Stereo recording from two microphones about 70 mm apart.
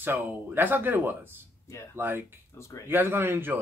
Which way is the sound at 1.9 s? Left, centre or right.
Right.